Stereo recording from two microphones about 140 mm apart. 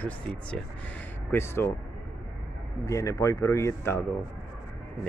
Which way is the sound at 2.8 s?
25° left (ahead or behind).